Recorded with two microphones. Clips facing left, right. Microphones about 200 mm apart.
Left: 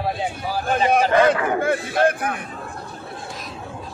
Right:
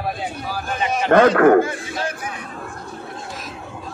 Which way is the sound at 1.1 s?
60° right (ahead or behind).